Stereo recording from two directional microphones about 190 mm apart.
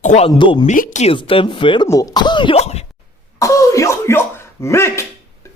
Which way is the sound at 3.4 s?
15° left (ahead or behind).